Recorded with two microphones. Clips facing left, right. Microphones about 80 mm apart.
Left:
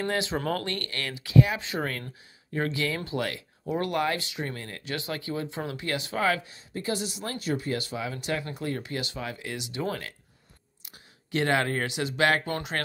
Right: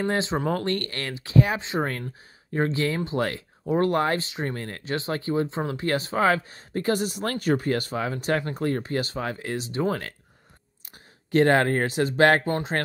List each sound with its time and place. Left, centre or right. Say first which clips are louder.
0.1 s speech: right 3 dB; right
11.3 s speech: right 6 dB; right
12.4 s speech: right 5 dB; right